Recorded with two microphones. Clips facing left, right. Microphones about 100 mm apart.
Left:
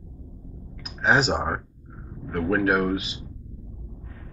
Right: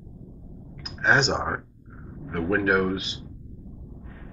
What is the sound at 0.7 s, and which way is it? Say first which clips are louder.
Speech: left 1 dB; 5° left (ahead or behind).